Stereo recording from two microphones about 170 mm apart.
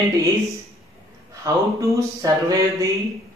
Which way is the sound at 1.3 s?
20° right (ahead or behind).